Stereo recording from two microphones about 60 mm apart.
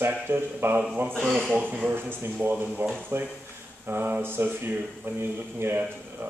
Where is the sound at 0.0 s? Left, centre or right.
Right.